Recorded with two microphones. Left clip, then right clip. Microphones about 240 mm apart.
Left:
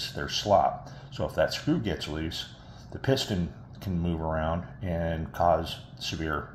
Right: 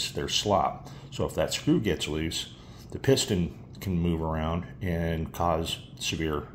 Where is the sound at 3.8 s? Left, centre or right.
Right.